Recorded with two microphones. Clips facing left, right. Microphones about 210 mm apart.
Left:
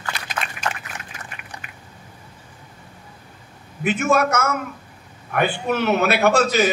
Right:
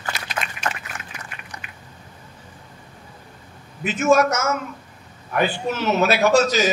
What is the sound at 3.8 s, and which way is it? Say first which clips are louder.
A man's voice: right 2 dB; 60° left (ahead or behind).